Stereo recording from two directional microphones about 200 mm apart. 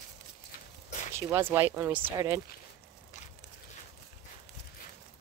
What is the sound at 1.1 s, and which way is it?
Speech, 10° right (ahead or behind).